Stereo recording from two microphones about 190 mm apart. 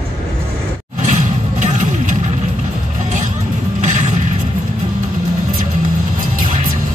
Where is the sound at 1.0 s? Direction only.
40° right (ahead or behind).